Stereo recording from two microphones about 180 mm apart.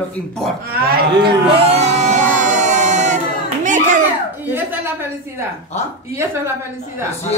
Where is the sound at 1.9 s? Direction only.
40° right (ahead or behind).